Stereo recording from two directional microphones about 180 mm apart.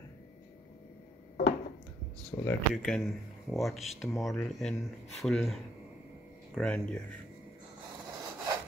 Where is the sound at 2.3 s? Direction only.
20° left (ahead or behind).